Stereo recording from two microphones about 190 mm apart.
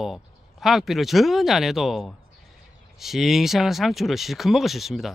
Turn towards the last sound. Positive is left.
turn(degrees=0)  # may be behind; listen again after turning